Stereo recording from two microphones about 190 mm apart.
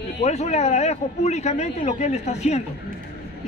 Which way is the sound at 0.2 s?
35° left (ahead or behind).